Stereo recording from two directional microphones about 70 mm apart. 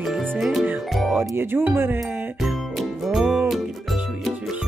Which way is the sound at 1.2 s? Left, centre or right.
Right.